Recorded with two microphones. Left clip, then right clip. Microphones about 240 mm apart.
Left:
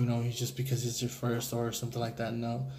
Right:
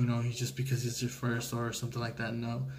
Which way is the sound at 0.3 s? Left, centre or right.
Left.